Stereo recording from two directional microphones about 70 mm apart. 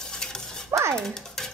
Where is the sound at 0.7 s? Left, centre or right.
Right.